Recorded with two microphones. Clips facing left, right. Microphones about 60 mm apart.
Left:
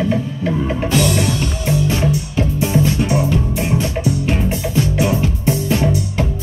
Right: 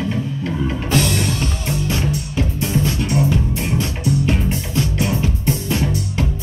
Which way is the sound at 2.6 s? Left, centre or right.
Centre.